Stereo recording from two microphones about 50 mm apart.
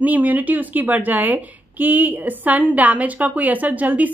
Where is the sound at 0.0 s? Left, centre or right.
Right.